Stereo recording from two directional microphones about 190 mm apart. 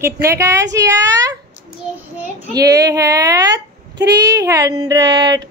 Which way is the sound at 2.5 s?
20° right (ahead or behind).